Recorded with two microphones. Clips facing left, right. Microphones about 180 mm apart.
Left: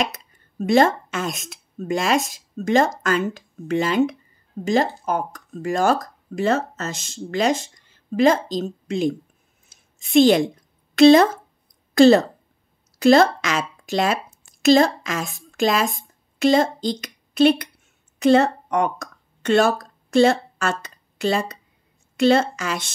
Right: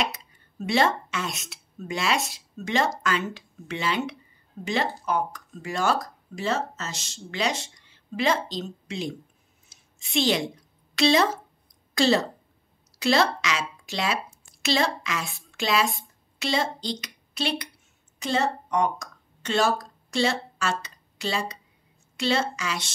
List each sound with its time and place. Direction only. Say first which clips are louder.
0.0 s speech: left 4 dB; 50° left (ahead or behind)
9.7 s a sound: left 11 dB; 50° left (ahead or behind)
11.0 s a woman's voice: left 10 dB; 50° left (ahead or behind)